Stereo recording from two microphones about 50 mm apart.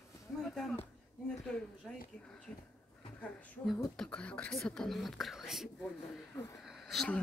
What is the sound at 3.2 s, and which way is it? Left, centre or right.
Speech, left.